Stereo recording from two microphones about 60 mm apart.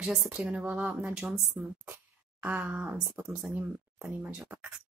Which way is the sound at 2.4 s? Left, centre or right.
Right.